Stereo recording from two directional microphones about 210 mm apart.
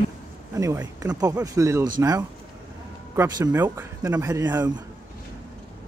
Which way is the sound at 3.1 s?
15° right (ahead or behind).